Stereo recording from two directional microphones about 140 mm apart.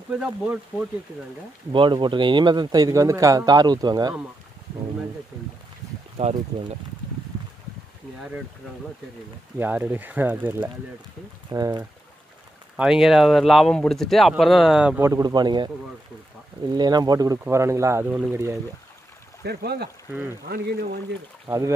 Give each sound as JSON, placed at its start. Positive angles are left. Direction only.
{"t": 0.2, "sound": "speech", "side_deg": -5}
{"t": 1.7, "sound": "speech", "side_deg": -35}
{"t": 6.2, "sound": "speech", "side_deg": -50}
{"t": 9.6, "sound": "speech", "side_deg": -15}
{"t": 11.5, "sound": "speech", "side_deg": -25}
{"t": 12.7, "sound": "speech", "side_deg": -5}
{"t": 15.0, "sound": "speech", "side_deg": -20}
{"t": 16.7, "sound": "speech", "side_deg": -30}
{"t": 20.4, "sound": "speech", "side_deg": -90}
{"t": 21.5, "sound": "speech", "side_deg": -20}